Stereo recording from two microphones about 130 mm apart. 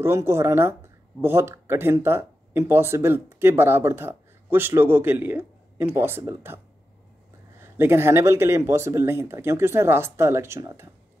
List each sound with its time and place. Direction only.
0.0 s speech: 20° right (ahead or behind)
7.6 s speech: 20° right (ahead or behind)